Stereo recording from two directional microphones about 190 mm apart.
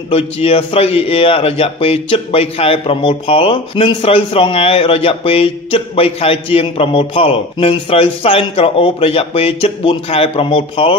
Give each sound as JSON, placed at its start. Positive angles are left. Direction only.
{"t": 0.1, "sound": "a man's voice", "side_deg": 30}